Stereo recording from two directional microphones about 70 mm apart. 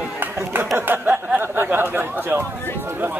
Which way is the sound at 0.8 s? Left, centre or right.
Right.